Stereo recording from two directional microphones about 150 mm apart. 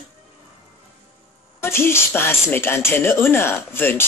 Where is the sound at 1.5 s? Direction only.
15° left (ahead or behind).